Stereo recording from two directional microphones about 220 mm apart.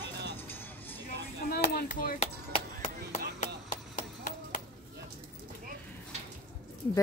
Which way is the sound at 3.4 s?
35° left (ahead or behind).